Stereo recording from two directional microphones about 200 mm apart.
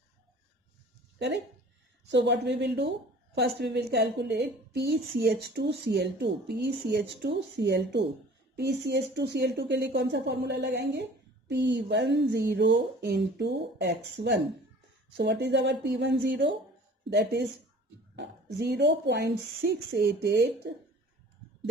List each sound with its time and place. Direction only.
2.0 s speech: 60° right (ahead or behind)